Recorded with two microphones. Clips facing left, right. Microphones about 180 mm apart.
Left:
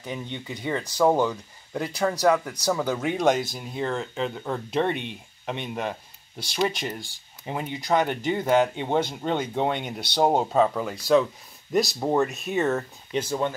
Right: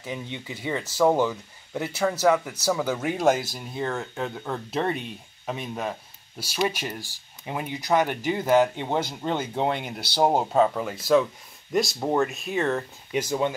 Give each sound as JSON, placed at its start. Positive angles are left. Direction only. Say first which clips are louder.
{"t": 0.0, "sound": "speech", "louder": "even", "side_deg": -5}
{"t": 13.1, "sound": "speech", "louder": "right 1 dB", "side_deg": -10}